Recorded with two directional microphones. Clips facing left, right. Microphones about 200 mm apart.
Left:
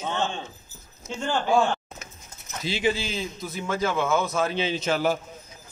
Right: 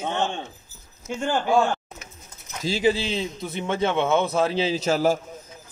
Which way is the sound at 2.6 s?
35° right (ahead or behind).